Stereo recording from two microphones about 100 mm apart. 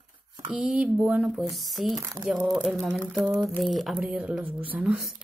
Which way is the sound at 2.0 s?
35° right (ahead or behind).